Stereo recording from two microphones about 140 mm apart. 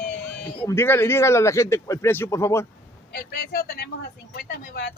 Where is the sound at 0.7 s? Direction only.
20° left (ahead or behind).